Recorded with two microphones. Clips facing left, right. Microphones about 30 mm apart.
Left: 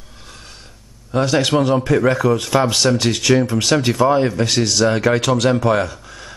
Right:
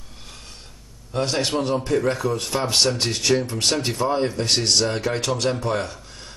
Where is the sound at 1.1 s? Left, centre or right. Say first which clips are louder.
Left 7 dB; left.